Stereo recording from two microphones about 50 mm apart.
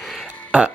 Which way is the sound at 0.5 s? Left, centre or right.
Right.